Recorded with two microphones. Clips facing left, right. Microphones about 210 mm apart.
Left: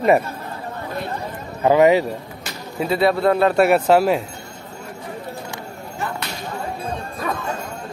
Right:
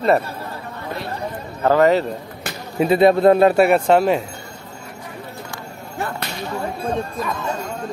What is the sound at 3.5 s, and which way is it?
Speech, centre (ahead or behind).